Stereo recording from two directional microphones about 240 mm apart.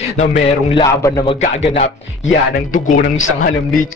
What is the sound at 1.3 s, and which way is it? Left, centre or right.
Speech, left.